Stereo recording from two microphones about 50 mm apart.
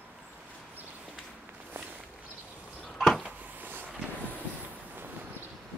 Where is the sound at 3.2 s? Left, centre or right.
Right.